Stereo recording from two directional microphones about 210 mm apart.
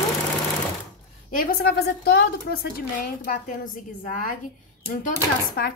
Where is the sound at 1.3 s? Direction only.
50° left (ahead or behind).